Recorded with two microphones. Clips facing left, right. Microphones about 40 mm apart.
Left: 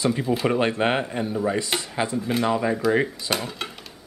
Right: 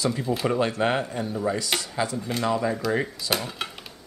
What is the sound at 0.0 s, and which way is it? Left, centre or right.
Speech, centre.